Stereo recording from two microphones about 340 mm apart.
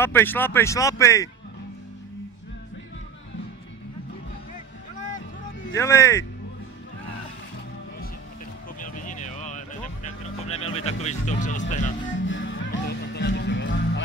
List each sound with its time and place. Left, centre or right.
0.0 s speech: centre
5.8 s speech: centre
8.7 s music: left
12.3 s music: left